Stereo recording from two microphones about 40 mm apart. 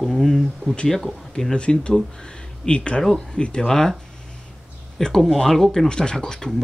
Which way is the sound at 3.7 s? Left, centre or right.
Centre.